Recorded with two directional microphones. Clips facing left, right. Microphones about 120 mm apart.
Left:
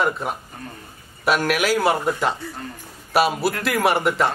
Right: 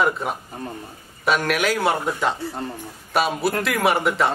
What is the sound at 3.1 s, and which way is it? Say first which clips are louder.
A man's voice: left 2 dB; 5° left (ahead or behind).